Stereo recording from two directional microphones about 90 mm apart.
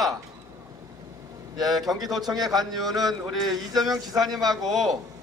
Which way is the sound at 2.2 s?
45° right (ahead or behind).